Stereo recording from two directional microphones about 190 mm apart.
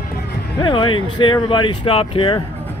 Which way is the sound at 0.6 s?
25° left (ahead or behind).